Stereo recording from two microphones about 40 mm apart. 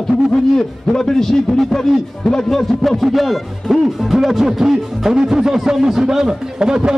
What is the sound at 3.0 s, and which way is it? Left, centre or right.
Speech, centre.